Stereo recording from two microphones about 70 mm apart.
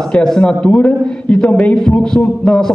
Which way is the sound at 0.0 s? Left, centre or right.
Centre.